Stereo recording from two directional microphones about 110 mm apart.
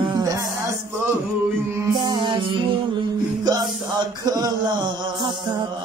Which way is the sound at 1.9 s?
45° right (ahead or behind).